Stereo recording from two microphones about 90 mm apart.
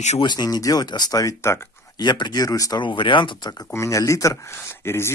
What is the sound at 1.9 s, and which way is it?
Speech, 55° left (ahead or behind).